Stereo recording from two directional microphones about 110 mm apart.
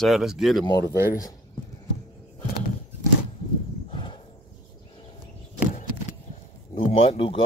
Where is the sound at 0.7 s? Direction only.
35° left (ahead or behind).